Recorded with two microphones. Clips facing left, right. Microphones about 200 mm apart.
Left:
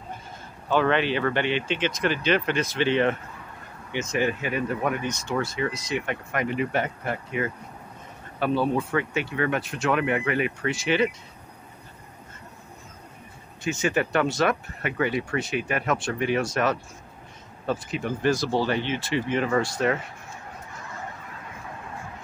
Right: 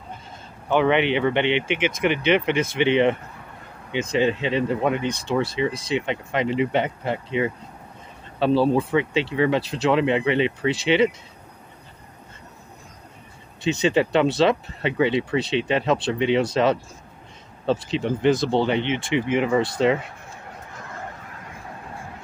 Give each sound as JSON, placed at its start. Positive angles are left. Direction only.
{"t": 0.7, "sound": "speech", "side_deg": -20}
{"t": 4.2, "sound": "speech", "side_deg": -25}
{"t": 13.8, "sound": "speech", "side_deg": -20}
{"t": 17.6, "sound": "speech", "side_deg": -25}